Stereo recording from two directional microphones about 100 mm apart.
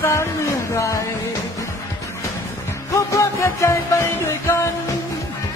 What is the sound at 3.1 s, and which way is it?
Music, 30° left (ahead or behind).